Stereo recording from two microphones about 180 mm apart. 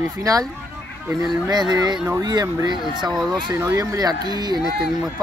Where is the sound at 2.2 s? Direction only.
20° right (ahead or behind).